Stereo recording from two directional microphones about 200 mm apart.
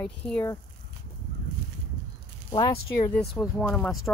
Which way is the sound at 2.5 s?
20° left (ahead or behind).